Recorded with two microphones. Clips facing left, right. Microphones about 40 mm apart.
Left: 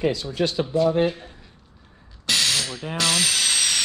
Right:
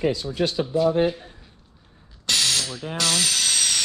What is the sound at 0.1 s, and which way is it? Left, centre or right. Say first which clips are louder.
Speech: even; left.